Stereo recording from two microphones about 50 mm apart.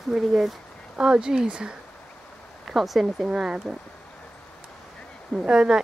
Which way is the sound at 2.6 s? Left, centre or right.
Centre.